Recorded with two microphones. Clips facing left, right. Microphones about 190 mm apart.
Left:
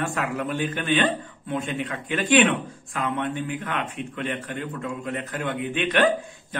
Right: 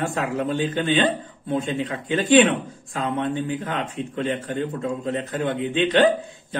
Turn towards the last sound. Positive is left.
turn(degrees=-25)  # may be behind; listen again after turning